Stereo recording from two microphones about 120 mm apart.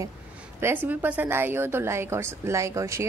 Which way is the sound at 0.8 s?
15° right (ahead or behind).